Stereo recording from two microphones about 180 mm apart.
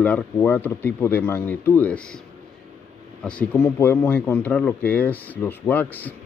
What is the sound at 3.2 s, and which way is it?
Speech, 5° left (ahead or behind).